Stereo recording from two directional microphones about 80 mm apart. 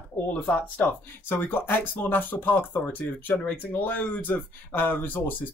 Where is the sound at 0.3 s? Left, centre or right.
Left.